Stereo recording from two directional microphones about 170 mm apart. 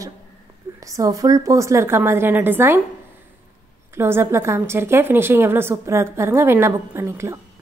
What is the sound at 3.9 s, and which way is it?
A woman's voice, 15° right (ahead or behind).